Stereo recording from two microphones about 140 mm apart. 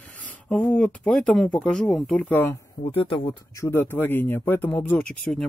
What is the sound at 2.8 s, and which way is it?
Speech, 40° left (ahead or behind).